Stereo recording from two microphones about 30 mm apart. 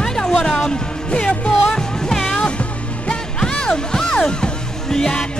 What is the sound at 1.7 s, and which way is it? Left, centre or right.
Music, left.